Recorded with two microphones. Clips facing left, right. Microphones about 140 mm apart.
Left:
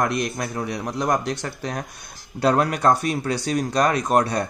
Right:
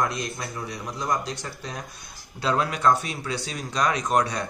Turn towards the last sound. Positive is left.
turn(degrees=55)  # may be behind; listen again after turning